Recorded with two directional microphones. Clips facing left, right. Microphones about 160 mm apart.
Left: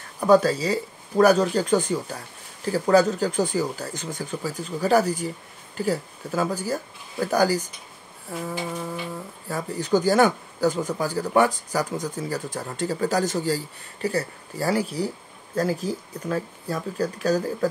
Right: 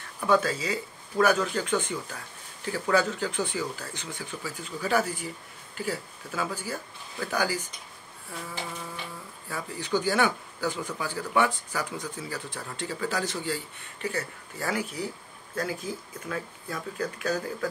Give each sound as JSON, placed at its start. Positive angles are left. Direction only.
{"t": 0.2, "sound": "speech", "side_deg": 40}
{"t": 9.5, "sound": "speech", "side_deg": 40}